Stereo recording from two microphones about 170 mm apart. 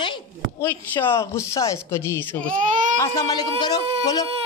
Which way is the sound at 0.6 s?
15° left (ahead or behind).